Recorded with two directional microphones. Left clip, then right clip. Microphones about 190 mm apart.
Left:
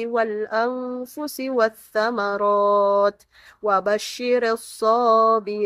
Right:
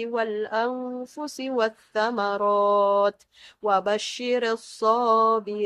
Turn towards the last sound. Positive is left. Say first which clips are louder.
# left 4 dB
turn(degrees=20)  # may be behind; listen again after turning